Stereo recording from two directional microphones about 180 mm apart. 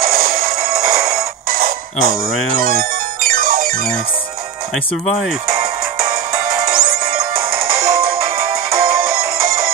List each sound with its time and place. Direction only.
0.0 s music: 55° right (ahead or behind)
2.5 s speech: 50° right (ahead or behind)
3.3 s music: 50° right (ahead or behind)
6.3 s music: 20° right (ahead or behind)
9.4 s music: 50° right (ahead or behind)